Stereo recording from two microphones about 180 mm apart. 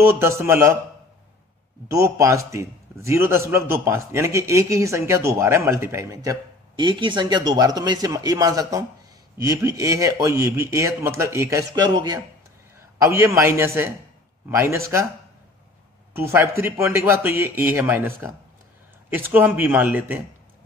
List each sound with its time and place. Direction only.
0.0 s a man's voice: 15° right (ahead or behind)
1.9 s a man's voice: 15° right (ahead or behind)
16.1 s a man's voice: 15° right (ahead or behind)